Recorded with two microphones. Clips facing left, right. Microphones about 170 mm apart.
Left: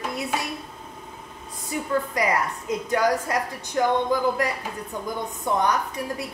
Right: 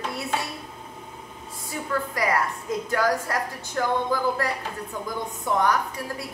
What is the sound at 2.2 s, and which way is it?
A woman's voice, 20° left (ahead or behind).